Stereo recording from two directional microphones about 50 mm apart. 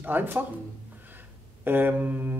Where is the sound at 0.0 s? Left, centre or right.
Right.